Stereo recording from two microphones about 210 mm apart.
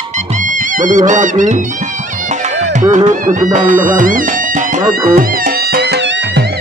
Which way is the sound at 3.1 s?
40° right (ahead or behind).